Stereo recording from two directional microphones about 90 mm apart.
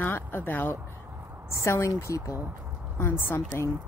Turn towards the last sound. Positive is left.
turn(degrees=30)  # may be behind; listen again after turning